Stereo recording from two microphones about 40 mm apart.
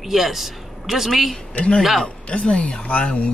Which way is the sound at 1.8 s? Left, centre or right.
Centre.